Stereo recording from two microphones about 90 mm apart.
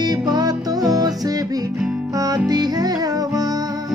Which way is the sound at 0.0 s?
50° right (ahead or behind).